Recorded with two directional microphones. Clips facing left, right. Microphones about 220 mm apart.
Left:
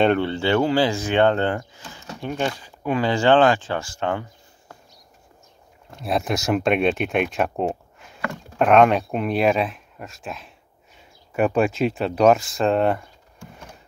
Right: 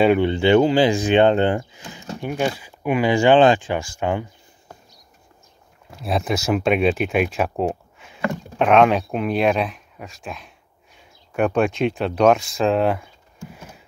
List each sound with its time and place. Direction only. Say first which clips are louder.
0.0 s speech: right 3 dB; 10° right (ahead or behind)
5.9 s speech: right 1 dB; centre (ahead or behind)